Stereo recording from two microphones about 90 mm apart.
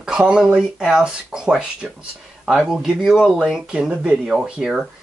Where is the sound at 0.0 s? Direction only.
10° right (ahead or behind).